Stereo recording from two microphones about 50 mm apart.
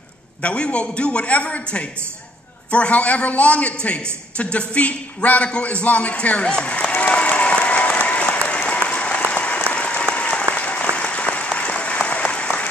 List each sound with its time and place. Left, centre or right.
0.4 s a man's voice: left
4.4 s a sound: left
8.8 s applause: left